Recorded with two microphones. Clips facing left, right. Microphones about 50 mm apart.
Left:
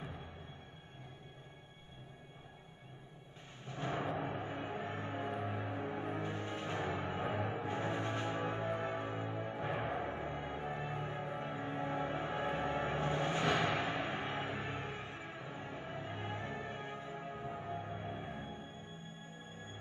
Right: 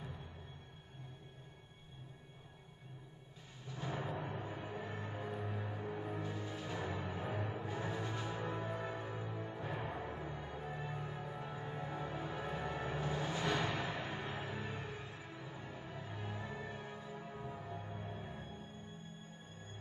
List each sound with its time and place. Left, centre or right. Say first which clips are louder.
3.6 s timpani: left 4 dB; left
4.2 s music: left 4 dB; left
13.4 s a sound: left 3 dB; centre
13.8 s music: left 4 dB; left